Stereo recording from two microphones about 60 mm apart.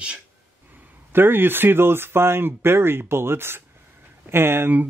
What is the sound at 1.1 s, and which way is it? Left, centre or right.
Speech, right.